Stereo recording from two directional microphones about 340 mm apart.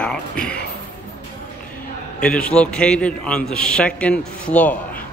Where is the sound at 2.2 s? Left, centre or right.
Centre.